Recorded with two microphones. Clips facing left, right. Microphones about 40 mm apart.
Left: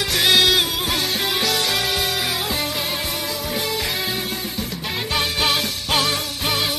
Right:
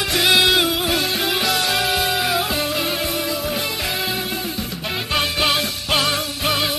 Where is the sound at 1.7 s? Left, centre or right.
Centre.